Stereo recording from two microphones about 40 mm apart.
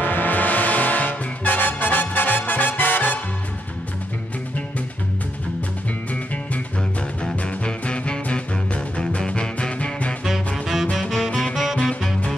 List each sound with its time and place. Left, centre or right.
0.0 s music: left
7.4 s music: left
11.0 s music: centre
11.5 s music: centre